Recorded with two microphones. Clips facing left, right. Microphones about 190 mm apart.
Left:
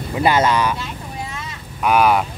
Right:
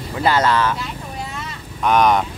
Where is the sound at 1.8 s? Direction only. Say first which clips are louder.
Even; 5° left (ahead or behind).